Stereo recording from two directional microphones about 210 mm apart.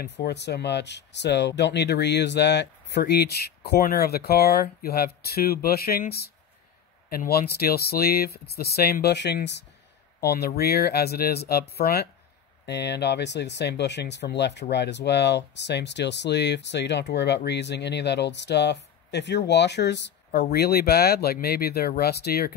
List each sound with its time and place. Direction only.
0.0 s speech: 55° left (ahead or behind)